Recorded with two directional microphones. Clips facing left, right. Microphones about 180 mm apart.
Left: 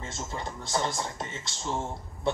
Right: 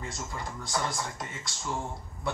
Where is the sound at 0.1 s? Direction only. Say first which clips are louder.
Left 2 dB; 25° left (ahead or behind).